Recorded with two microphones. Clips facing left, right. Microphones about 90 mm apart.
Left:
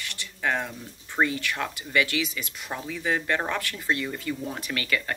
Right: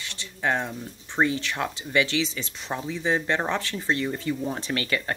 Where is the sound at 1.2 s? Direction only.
25° right (ahead or behind).